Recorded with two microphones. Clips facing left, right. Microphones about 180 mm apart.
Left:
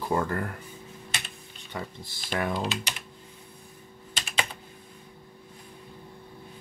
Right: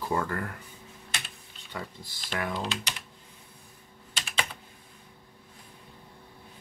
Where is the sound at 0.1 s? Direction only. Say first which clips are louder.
Left 3 dB; 20° left (ahead or behind).